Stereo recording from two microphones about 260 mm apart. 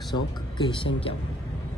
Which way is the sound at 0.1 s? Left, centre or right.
Centre.